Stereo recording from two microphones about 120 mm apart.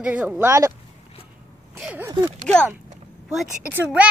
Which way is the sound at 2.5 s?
10° left (ahead or behind).